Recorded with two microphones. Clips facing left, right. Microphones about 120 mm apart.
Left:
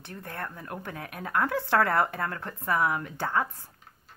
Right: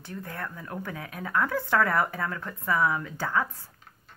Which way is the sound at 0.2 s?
25° left (ahead or behind).